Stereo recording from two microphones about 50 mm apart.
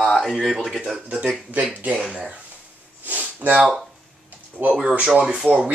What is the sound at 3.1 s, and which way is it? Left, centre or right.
Sniff, right.